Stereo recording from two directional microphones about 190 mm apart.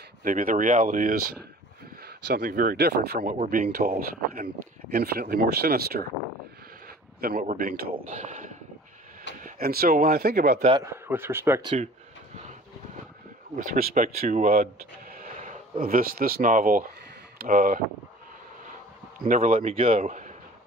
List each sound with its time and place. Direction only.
0.2 s speech: 45° right (ahead or behind)
7.2 s a man's voice: 50° right (ahead or behind)
9.4 s speech: 50° right (ahead or behind)
10.8 s speech: 15° right (ahead or behind)
13.6 s speech: 45° right (ahead or behind)
19.2 s a man's voice: 45° right (ahead or behind)